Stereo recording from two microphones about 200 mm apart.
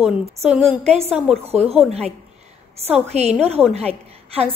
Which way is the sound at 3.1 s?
35° right (ahead or behind).